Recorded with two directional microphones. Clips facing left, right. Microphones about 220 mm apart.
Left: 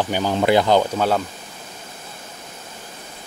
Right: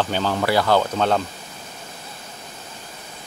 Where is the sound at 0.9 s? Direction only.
5° left (ahead or behind).